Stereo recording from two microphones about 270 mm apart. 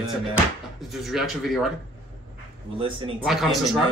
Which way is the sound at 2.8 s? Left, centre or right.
Centre.